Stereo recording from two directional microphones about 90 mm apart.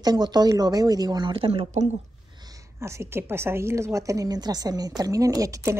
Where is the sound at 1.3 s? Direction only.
90° right.